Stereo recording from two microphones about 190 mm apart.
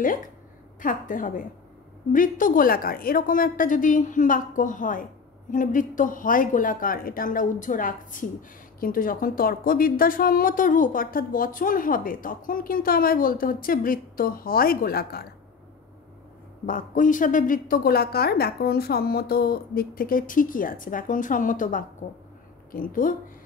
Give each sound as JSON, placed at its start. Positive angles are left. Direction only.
{"t": 0.7, "sound": "a woman's voice", "side_deg": 45}
{"t": 16.6, "sound": "a woman's voice", "side_deg": 45}